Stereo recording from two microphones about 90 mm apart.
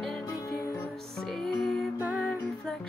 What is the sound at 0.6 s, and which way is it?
Music, 30° left (ahead or behind).